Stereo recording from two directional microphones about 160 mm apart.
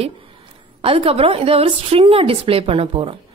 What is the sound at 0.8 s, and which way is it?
A woman's voice, 35° right (ahead or behind).